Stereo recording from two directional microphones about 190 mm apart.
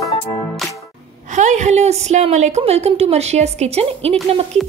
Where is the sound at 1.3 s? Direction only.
40° right (ahead or behind).